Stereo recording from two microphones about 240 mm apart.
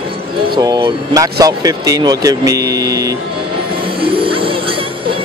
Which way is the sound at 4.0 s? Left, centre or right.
Right.